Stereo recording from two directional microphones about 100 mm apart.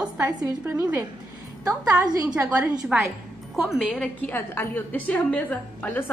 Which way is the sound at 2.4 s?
15° right (ahead or behind).